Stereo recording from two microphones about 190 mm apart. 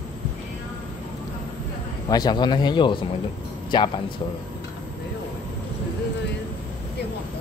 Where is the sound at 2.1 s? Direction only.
20° left (ahead or behind).